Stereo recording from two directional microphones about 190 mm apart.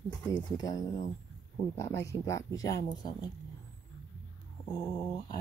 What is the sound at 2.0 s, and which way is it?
Speech, 15° left (ahead or behind).